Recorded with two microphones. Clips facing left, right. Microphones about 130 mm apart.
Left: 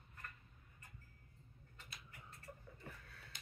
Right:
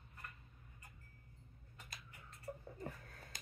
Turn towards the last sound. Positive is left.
turn(degrees=-45)  # may be behind; listen again after turning